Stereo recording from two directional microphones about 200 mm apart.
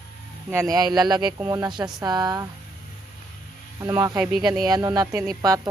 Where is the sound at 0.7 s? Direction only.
20° right (ahead or behind).